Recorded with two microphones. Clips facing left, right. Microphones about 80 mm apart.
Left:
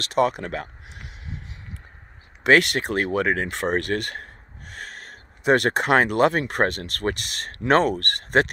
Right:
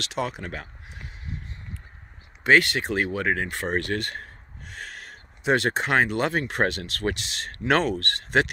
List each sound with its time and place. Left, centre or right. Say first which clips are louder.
0.0 s speech: left 8 dB; left
2.4 s speech: left 2 dB; left